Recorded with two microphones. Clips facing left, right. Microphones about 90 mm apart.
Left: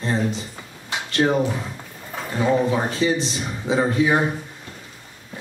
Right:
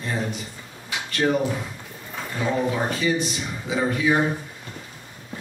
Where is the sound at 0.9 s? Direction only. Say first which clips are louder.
Left 2 dB; 30° left (ahead or behind).